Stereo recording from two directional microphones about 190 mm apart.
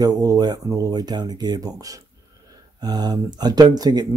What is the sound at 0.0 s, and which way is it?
Speech, 20° right (ahead or behind).